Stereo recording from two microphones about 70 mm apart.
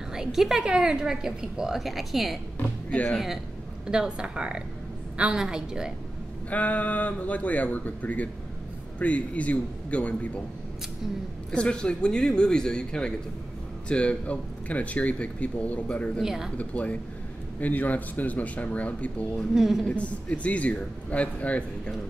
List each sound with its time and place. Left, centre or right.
0.1 s a woman's voice: centre
2.9 s speech: centre
3.8 s a woman's voice: centre
6.5 s speech: left
11.5 s speech: centre
16.2 s speech: centre
16.5 s speech: centre
19.5 s a woman's voice: centre
19.9 s speech: centre